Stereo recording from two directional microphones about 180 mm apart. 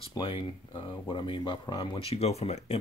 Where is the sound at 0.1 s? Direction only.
25° left (ahead or behind).